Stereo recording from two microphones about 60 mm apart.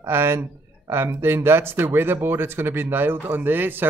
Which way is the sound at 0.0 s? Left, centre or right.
Right.